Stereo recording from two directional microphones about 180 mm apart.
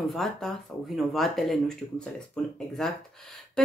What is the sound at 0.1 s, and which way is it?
Speech, centre (ahead or behind).